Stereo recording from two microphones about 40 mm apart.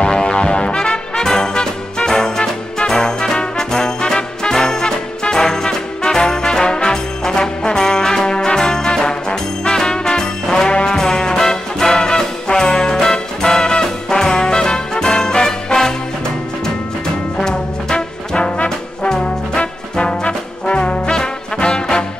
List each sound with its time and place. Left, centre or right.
0.0 s music: centre
17.4 s trombone: centre
21.2 s music: left